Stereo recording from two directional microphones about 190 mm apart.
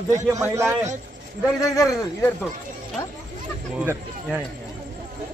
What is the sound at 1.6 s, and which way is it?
Speech, 15° left (ahead or behind).